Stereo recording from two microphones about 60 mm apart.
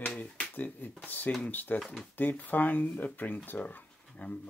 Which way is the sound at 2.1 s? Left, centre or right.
Left.